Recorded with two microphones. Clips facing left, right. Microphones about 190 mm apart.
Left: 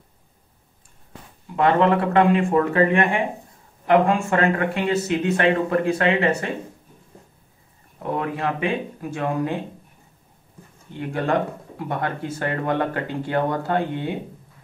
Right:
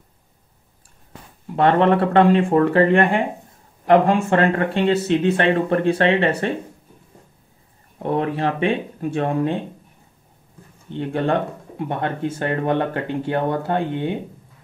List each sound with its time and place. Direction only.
1.6 s speech: 35° right (ahead or behind)
8.0 s speech: 30° right (ahead or behind)
10.9 s speech: 25° right (ahead or behind)